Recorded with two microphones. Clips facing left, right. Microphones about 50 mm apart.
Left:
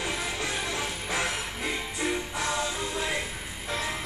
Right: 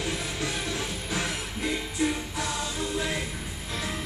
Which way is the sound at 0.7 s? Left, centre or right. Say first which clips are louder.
Left 1 dB; centre.